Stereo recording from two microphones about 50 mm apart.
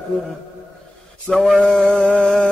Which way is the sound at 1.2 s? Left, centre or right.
Centre.